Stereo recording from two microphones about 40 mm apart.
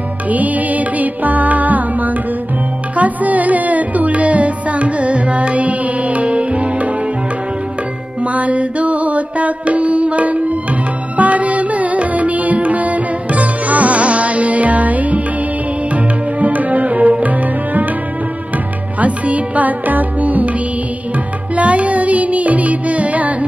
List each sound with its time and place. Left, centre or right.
0.3 s music: right
8.2 s music: right
18.9 s music: right
21.5 s music: right